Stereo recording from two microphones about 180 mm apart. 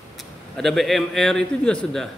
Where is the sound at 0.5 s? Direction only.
Centre (ahead or behind).